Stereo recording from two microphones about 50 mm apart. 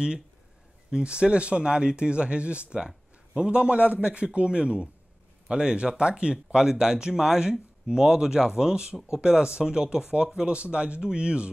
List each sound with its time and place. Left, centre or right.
0.8 s speech: centre